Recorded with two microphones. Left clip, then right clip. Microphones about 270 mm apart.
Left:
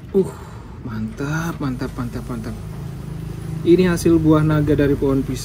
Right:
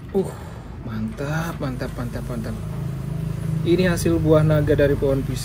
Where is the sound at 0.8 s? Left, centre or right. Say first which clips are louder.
Left 2 dB; centre.